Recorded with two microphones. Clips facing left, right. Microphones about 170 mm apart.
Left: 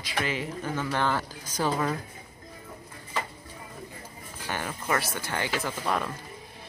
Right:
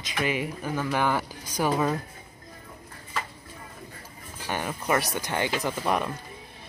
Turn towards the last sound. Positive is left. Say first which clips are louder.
# right 3 dB
turn(degrees=-15)  # may be behind; listen again after turning